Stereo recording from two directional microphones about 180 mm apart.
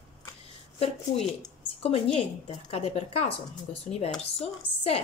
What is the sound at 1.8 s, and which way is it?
Speech, 35° left (ahead or behind).